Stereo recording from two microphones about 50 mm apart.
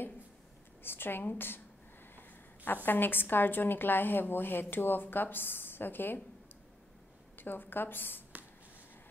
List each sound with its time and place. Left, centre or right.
0.8 s a woman's voice: left
7.3 s a woman's voice: left